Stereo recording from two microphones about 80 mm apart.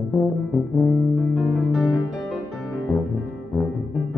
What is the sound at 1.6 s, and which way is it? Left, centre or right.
Music, centre.